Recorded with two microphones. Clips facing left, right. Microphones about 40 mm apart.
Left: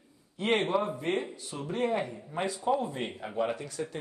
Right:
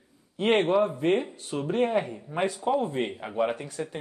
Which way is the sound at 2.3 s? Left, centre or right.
Right.